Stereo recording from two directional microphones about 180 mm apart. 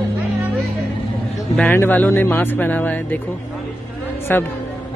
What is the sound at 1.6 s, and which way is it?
Speech, 10° left (ahead or behind).